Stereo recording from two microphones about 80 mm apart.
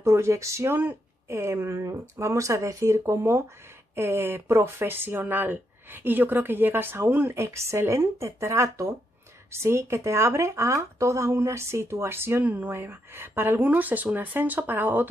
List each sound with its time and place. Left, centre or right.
0.0 s speech: right